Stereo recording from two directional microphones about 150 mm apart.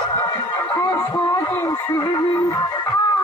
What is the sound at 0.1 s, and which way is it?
Speech, 25° left (ahead or behind).